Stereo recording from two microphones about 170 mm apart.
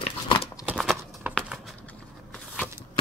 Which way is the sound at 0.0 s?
35° left (ahead or behind).